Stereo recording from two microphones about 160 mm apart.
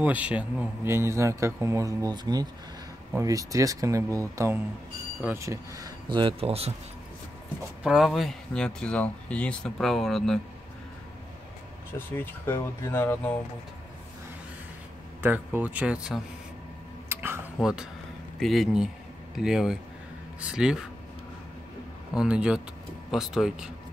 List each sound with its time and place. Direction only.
0.0 s a man's voice: 10° right (ahead or behind); by 6.7 s 40° right (ahead or behind)
7.8 s speech: 5° right (ahead or behind)
12.2 s speech: 15° left (ahead or behind)
15.2 s a man's voice: 10° right (ahead or behind)
17.1 s tick-tock: 15° right (ahead or behind)
17.6 s speech: 5° right (ahead or behind)
22.1 s speech: 5° right (ahead or behind)